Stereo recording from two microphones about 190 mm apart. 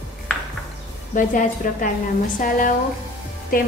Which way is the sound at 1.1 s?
45° left (ahead or behind).